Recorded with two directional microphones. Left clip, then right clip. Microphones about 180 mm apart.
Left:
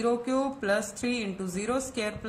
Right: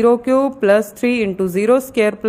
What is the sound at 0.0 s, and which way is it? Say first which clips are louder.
A woman's voice: right 14 dB; 45° right (ahead or behind).